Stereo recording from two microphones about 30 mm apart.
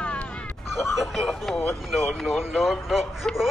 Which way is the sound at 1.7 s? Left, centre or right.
Centre.